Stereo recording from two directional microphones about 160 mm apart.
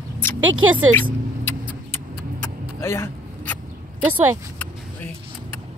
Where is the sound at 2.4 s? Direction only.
15° left (ahead or behind).